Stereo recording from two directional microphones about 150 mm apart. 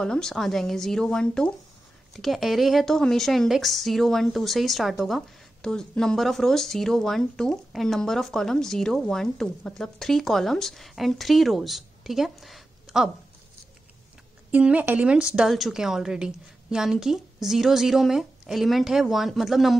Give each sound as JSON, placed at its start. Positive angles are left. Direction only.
{"t": 0.0, "sound": "a woman's voice", "side_deg": 5}
{"t": 14.5, "sound": "a woman's voice", "side_deg": -10}